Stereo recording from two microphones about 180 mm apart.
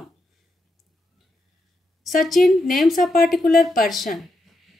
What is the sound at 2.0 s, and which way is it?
Speech, centre (ahead or behind).